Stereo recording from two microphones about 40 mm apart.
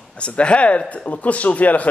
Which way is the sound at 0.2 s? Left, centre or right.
Left.